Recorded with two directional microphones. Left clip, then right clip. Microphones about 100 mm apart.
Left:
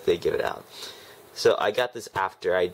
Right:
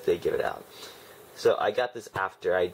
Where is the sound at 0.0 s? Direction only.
30° left (ahead or behind).